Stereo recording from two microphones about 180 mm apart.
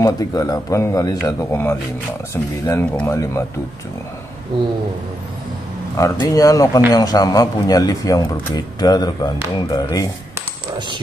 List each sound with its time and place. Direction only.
0.0 s speech: 20° left (ahead or behind)
5.9 s speech: 20° left (ahead or behind)